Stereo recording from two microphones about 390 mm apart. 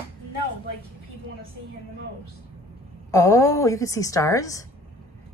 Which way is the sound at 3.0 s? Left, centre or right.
Centre.